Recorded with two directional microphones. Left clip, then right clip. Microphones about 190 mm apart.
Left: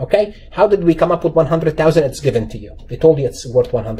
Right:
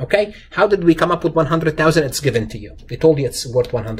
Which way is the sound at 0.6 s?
10° right (ahead or behind).